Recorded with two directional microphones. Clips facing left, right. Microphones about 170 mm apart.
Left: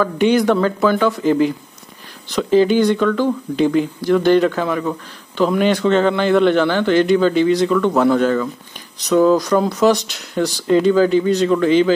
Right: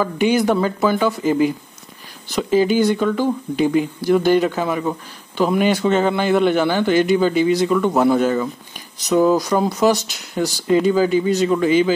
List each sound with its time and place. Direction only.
0.0 s a man's voice: 5° right (ahead or behind)